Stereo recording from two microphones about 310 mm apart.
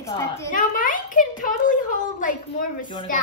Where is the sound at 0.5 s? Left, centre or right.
Left.